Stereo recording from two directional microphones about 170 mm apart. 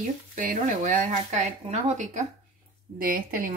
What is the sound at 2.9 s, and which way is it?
Speech, 55° right (ahead or behind).